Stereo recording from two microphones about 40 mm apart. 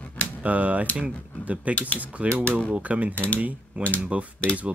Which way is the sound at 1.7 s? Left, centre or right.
Left.